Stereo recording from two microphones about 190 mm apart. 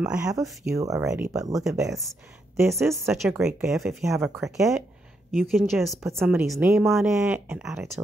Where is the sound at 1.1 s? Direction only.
5° right (ahead or behind).